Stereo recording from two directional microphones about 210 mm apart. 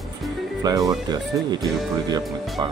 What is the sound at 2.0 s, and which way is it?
Speech, 20° right (ahead or behind).